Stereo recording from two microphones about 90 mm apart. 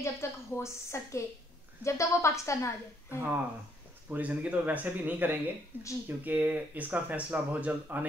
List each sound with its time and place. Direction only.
0.0 s a woman's voice: 30° left (ahead or behind)
4.1 s speech: 15° right (ahead or behind)